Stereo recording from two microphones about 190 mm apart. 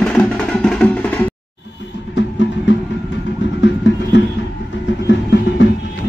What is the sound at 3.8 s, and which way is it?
Music, 75° left (ahead or behind).